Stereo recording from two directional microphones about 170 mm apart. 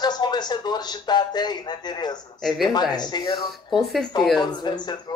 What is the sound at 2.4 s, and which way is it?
Speech, centre (ahead or behind).